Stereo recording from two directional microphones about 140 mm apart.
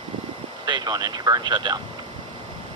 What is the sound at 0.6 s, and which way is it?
Speech, 30° right (ahead or behind).